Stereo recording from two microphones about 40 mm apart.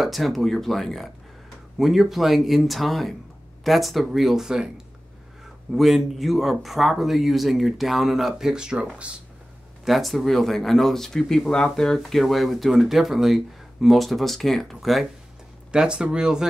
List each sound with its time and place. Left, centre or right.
0.0 s speech: centre
5.7 s speech: centre
9.8 s speech: centre
12.0 s speech: centre
15.7 s speech: right